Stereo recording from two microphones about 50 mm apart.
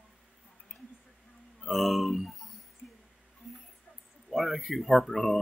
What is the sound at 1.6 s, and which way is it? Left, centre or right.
Speech, centre.